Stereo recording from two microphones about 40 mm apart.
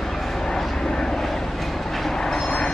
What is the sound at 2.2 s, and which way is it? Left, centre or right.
Train, centre.